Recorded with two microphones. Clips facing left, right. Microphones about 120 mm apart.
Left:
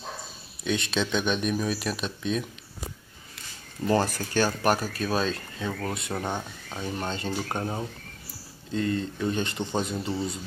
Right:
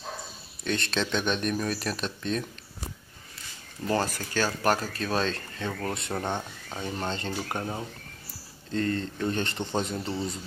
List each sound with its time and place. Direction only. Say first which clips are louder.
0.7 s speech: left 2 dB; 5° left (ahead or behind)
3.8 s speech: left 3 dB; 20° left (ahead or behind); by 10.3 s 5° left (ahead or behind)